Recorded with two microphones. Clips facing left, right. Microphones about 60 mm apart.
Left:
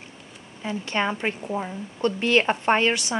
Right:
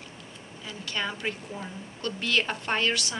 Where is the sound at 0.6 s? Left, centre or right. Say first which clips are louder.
Left 7 dB; left.